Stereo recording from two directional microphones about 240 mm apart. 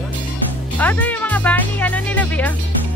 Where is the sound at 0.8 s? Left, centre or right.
Centre.